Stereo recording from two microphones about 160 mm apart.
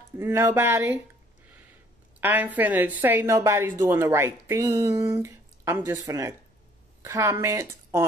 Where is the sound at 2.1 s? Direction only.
10° right (ahead or behind).